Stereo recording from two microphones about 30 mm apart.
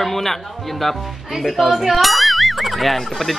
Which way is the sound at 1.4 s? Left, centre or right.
Centre.